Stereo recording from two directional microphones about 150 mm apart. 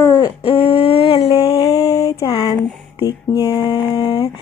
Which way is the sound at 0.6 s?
40° left (ahead or behind).